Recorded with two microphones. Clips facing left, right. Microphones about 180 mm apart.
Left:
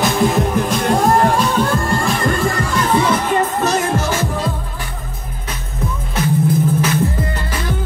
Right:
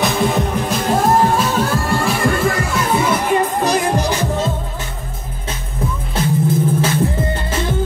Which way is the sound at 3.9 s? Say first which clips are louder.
Right 1 dB; 15° right (ahead or behind).